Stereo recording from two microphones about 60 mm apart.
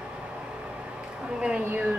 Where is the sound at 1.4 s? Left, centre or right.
Centre.